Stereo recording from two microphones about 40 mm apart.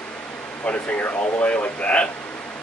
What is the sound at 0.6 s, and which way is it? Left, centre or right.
Speech, left.